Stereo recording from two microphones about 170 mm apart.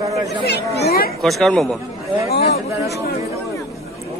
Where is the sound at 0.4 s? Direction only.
70° left (ahead or behind).